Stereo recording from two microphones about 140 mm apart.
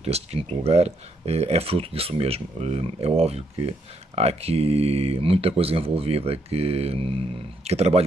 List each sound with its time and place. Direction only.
0.0 s speech: 45° right (ahead or behind)